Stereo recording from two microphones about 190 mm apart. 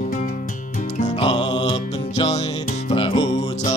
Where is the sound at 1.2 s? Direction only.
25° left (ahead or behind).